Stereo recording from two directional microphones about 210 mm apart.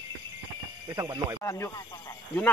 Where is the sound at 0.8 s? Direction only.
15° right (ahead or behind).